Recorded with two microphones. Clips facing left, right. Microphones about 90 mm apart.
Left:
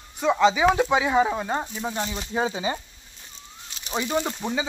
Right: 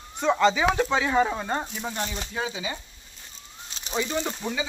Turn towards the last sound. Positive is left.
turn(degrees=25)  # may be behind; listen again after turning